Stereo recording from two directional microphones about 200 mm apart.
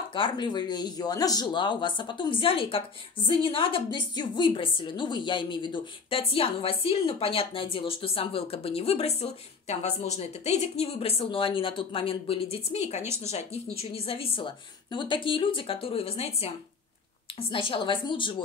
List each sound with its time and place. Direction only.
0.1 s a woman's voice: 25° left (ahead or behind)
13.0 s speech: 10° right (ahead or behind)
13.3 s a woman's voice: 30° left (ahead or behind)